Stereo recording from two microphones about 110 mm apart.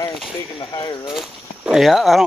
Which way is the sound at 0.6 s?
40° left (ahead or behind).